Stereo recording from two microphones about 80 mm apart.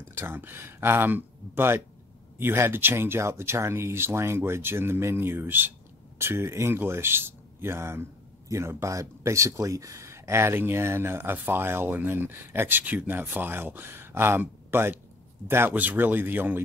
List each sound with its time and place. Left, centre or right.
0.1 s a man's voice: right